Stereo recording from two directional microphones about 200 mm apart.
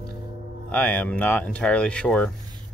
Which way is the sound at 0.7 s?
10° left (ahead or behind).